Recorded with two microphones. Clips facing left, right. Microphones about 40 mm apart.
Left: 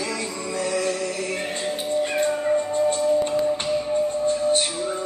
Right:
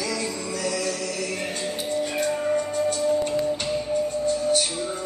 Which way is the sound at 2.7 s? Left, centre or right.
Left.